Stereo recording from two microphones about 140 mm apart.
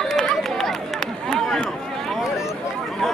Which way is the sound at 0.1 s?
Centre (ahead or behind).